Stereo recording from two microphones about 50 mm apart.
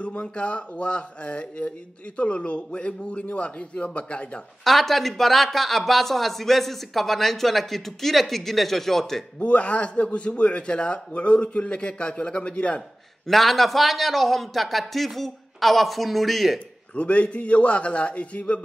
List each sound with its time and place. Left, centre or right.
0.0 s a man's voice: left
4.6 s speech: centre
9.4 s a man's voice: left
13.3 s speech: centre
16.5 s a man's voice: left